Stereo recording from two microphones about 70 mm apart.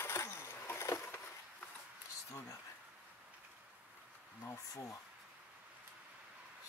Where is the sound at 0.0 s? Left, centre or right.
Left.